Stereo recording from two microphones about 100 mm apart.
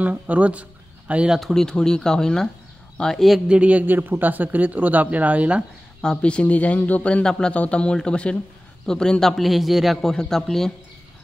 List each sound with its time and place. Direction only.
0.0 s speech: 15° right (ahead or behind)
1.4 s a man's voice: 5° left (ahead or behind)
3.4 s a man's voice: 10° right (ahead or behind)
5.9 s a man's voice: 10° left (ahead or behind)